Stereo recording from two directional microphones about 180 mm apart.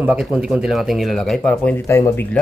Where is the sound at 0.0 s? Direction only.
5° right (ahead or behind); by 2.2 s 15° left (ahead or behind).